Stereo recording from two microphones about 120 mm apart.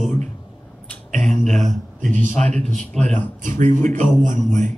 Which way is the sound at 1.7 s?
90° right.